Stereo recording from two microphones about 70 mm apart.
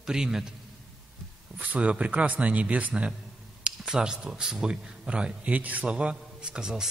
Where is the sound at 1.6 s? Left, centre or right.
Centre.